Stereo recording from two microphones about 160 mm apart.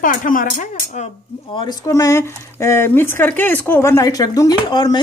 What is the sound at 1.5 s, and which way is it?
Speech, 30° left (ahead or behind).